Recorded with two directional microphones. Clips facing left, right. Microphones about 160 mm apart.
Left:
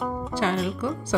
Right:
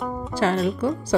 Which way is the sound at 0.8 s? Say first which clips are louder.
Right 4 dB; 40° right (ahead or behind).